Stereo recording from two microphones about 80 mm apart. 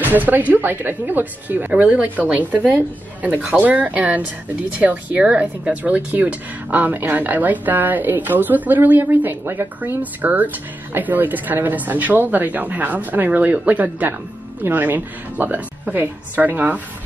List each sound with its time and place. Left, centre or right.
0.0 s speech: right